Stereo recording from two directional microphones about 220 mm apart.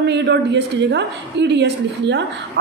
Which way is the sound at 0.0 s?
50° right (ahead or behind).